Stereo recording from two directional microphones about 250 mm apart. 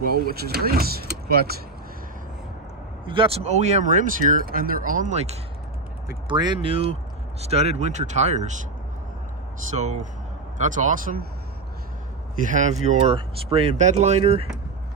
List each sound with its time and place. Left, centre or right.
0.0 s speech: right
3.1 s speech: right
9.8 s speech: right
12.4 s speech: right